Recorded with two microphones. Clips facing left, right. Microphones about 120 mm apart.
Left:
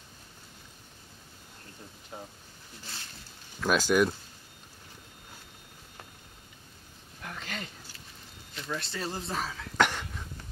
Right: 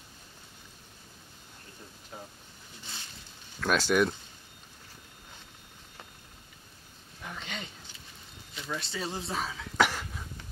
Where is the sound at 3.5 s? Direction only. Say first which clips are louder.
Left 1 dB; 5° left (ahead or behind).